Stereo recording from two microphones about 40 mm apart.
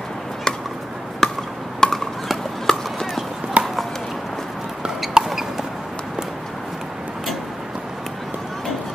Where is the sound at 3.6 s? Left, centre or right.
Right.